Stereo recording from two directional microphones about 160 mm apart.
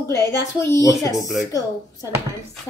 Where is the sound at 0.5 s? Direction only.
20° left (ahead or behind).